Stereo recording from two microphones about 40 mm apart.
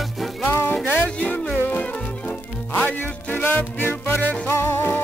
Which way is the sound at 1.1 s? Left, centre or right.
Left.